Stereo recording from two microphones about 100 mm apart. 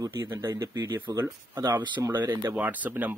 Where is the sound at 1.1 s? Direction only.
40° right (ahead or behind).